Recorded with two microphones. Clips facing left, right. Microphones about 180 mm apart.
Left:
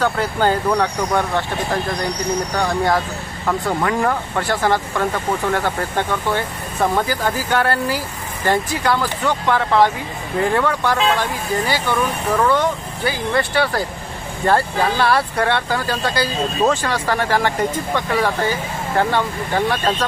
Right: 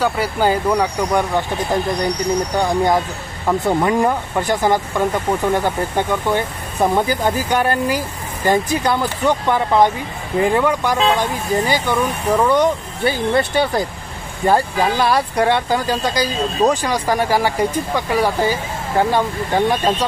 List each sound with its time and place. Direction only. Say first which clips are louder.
0.0 s speech: right 1 dB; 10° right (ahead or behind)